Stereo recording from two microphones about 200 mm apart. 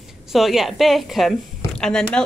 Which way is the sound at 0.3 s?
Centre (ahead or behind).